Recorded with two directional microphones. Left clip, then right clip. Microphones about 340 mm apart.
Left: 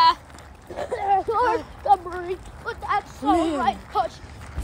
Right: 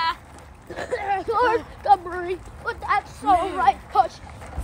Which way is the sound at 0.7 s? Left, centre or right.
Right.